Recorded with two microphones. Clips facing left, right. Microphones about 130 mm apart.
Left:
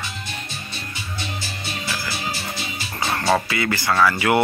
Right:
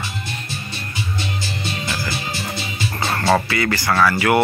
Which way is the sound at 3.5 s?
15° left (ahead or behind).